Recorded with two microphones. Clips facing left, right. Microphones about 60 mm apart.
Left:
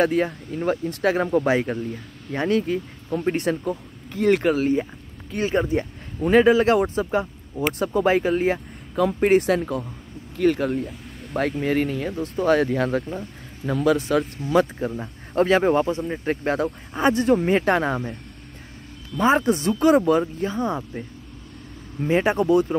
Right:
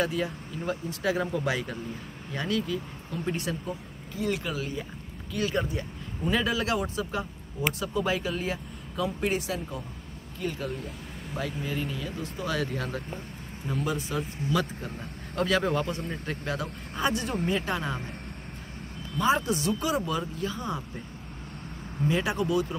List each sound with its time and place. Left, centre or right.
0.0 s speech: left
3.6 s speech: left
5.4 s speech: left
9.0 s speech: left
9.6 s speech: left
13.7 s speech: left
14.5 s speech: left
19.2 s speech: left
22.0 s speech: left